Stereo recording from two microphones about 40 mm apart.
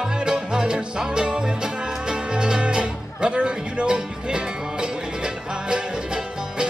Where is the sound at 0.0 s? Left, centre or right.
Centre.